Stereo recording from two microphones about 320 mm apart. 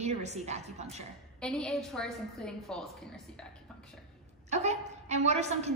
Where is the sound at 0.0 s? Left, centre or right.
Right.